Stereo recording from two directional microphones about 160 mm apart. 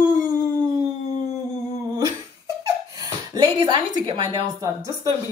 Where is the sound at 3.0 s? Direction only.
25° right (ahead or behind).